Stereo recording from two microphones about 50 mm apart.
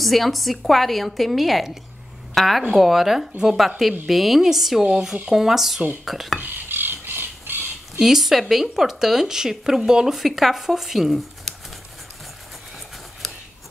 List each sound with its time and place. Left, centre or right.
0.0 s a woman's voice: centre
6.4 s squawk: right
8.0 s speech: centre
13.2 s a sound: centre